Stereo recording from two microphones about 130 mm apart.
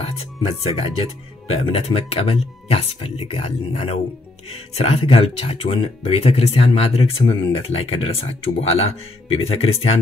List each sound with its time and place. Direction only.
0.0 s speech: 50° left (ahead or behind)